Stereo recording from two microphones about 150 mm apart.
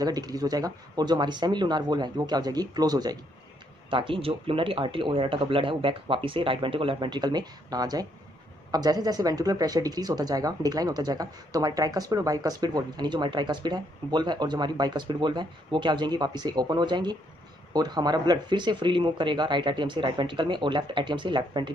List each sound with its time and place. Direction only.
0.0 s speech: 25° right (ahead or behind)